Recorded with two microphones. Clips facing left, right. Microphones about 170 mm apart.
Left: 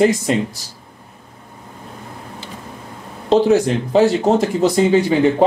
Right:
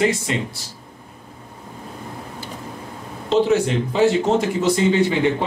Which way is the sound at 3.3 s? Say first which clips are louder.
Left 4 dB; 40° left (ahead or behind).